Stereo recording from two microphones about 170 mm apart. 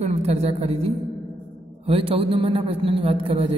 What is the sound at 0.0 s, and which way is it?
A woman's voice, 40° right (ahead or behind).